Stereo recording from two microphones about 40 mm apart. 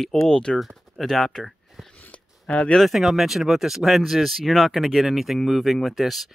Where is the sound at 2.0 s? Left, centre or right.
Left.